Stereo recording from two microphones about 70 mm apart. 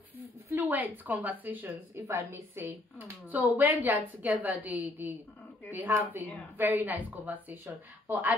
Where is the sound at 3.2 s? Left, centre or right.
Right.